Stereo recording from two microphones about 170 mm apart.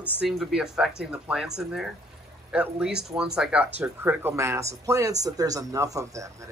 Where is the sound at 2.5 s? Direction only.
5° right (ahead or behind).